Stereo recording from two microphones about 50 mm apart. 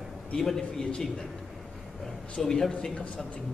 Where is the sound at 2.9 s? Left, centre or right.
Left.